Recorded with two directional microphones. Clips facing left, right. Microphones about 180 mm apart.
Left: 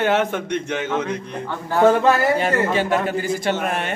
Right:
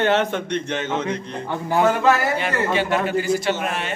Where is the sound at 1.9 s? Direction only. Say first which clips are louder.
Left 4 dB; 40° left (ahead or behind).